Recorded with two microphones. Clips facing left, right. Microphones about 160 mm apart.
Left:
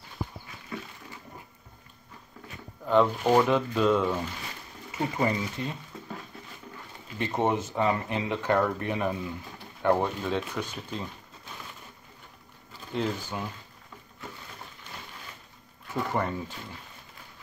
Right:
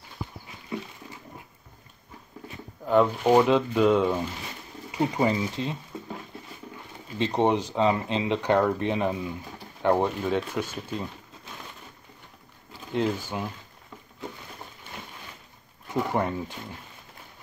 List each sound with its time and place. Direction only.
2.8 s speech: 5° right (ahead or behind)
3.3 s speech: 20° right (ahead or behind)
7.2 s speech: 20° right (ahead or behind)
12.9 s speech: 15° right (ahead or behind)
15.9 s speech: 15° right (ahead or behind)